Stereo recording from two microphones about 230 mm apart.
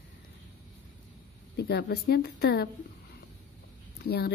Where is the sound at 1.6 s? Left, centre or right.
Left.